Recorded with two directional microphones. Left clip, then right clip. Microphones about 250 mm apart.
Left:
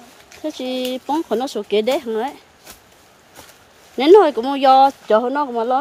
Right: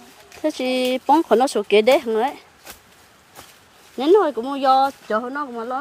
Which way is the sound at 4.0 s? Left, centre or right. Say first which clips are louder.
Left 5 dB; centre.